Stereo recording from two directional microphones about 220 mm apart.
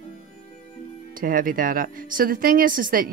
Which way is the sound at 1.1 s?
40° right (ahead or behind).